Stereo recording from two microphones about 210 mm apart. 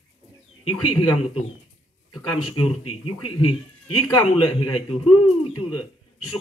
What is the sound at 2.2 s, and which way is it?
Speech, 90° left.